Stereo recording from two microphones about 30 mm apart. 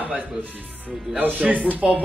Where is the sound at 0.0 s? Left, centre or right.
Right.